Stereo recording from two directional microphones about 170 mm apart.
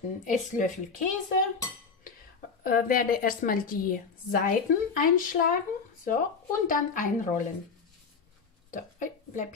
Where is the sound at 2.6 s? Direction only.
55° left (ahead or behind).